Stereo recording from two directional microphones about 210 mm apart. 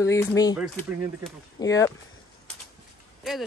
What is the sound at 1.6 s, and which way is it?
Speech, 15° left (ahead or behind).